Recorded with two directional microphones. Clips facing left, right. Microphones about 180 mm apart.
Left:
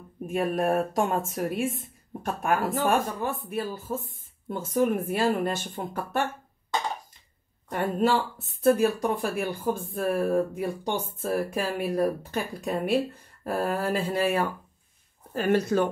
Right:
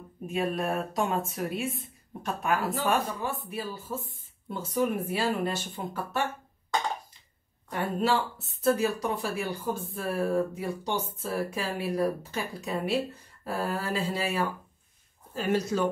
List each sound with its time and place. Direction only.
0.3 s speech: 50° left (ahead or behind)
7.7 s speech: 50° left (ahead or behind)